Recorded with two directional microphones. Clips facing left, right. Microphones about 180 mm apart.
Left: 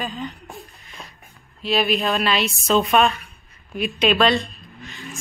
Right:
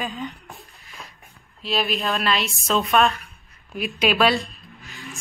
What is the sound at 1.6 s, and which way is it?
A woman's voice, centre (ahead or behind).